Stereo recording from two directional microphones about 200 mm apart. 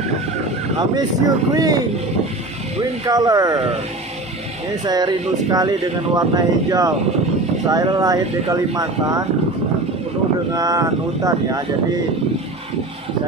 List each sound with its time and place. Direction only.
0.7 s speech: 20° right (ahead or behind)
3.1 s speech: 20° right (ahead or behind)
4.8 s speech: 20° right (ahead or behind)
10.5 s speech: 20° right (ahead or behind)